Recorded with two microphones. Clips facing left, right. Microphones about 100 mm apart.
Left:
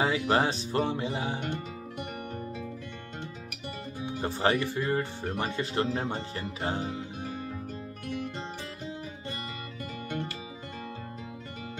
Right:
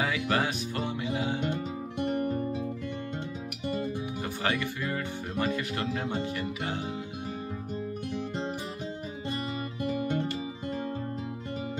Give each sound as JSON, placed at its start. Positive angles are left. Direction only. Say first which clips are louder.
{"t": 0.0, "sound": "speech", "louder": "left 3 dB", "side_deg": 30}
{"t": 4.0, "sound": "speech", "louder": "left 4 dB", "side_deg": 30}